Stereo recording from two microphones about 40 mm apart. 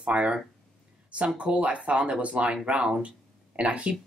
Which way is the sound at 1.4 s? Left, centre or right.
Right.